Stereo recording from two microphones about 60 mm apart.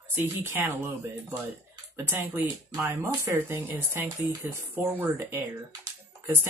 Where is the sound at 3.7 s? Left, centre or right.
Right.